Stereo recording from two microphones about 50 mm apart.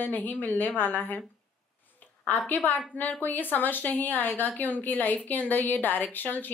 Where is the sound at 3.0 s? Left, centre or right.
Left.